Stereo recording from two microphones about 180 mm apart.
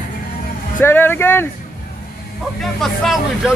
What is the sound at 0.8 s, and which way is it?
Speech, 10° left (ahead or behind).